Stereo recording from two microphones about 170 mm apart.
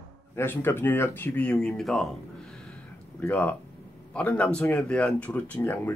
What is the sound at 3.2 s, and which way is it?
Speech, 10° left (ahead or behind).